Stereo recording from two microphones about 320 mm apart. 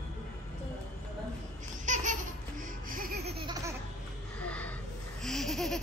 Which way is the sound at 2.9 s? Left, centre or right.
Right.